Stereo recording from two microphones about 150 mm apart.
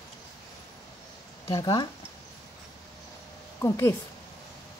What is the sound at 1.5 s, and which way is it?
Speech, 30° left (ahead or behind).